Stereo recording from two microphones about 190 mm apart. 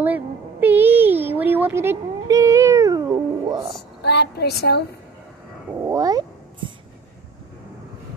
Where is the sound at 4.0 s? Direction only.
60° left (ahead or behind).